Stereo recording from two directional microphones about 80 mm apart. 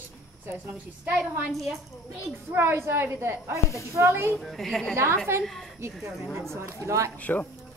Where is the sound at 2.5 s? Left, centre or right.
Right.